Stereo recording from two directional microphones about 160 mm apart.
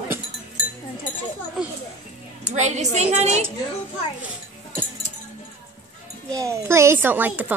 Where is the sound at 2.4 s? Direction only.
45° right (ahead or behind).